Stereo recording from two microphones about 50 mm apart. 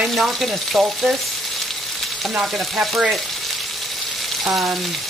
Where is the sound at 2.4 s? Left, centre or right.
Centre.